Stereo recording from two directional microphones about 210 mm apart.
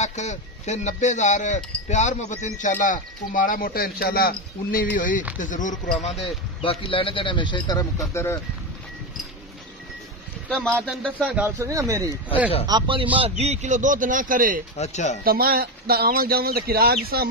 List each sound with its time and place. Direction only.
0.0 s speech: 35° left (ahead or behind)
6.6 s speech: 25° left (ahead or behind)
10.5 s a man's voice: 5° left (ahead or behind); by 14.6 s 40° right (ahead or behind)
14.8 s speech: 35° left (ahead or behind)
15.2 s speech: 45° right (ahead or behind)